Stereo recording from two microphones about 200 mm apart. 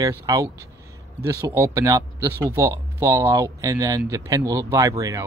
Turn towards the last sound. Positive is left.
turn(degrees=-15)  # may be behind; listen again after turning